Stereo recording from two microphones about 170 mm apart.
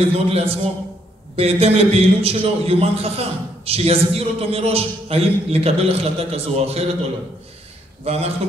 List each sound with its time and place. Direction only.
0.1 s a man's voice: 35° right (ahead or behind)
8.0 s a man's voice: 35° right (ahead or behind)